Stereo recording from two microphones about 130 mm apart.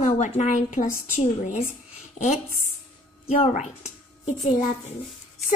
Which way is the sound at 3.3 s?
65° left (ahead or behind).